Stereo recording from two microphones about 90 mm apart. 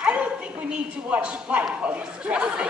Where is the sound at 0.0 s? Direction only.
15° right (ahead or behind).